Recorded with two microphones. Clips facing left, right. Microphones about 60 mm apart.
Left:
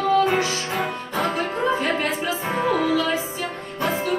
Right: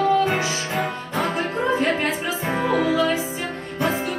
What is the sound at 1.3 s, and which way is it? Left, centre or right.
Music, centre.